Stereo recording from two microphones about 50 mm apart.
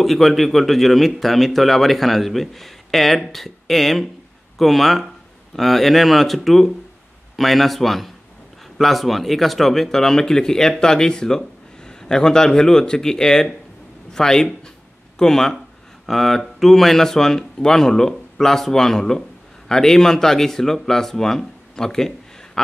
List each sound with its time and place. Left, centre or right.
0.0 s speech: centre